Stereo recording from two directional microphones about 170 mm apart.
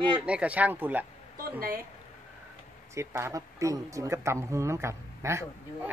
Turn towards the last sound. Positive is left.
turn(degrees=-15)  # may be behind; listen again after turning